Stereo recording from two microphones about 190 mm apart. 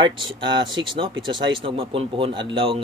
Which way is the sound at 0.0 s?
25° right (ahead or behind).